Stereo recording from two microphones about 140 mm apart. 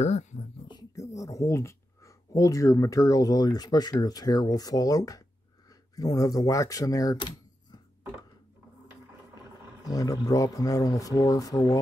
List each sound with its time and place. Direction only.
0.0 s speech: 55° left (ahead or behind)
0.7 s a sound: 25° left (ahead or behind)
4.0 s speech: 25° left (ahead or behind)
9.8 s speech: 25° left (ahead or behind)